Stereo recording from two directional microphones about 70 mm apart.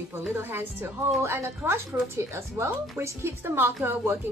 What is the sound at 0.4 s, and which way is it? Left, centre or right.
A woman's voice, right.